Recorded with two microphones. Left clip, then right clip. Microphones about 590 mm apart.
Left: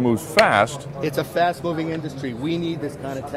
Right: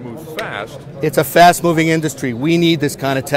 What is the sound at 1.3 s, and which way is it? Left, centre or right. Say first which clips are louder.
Speech: right 13 dB; right.